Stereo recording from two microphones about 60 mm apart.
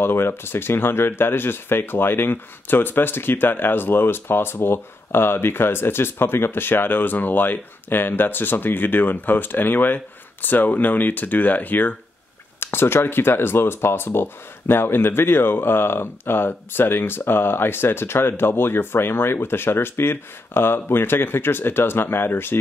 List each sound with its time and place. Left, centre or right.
0.0 s speech: left
12.5 s speech: left